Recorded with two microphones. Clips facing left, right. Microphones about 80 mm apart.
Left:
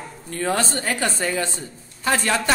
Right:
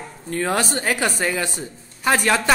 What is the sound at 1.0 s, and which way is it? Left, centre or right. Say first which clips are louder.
Speech: right 1 dB; centre.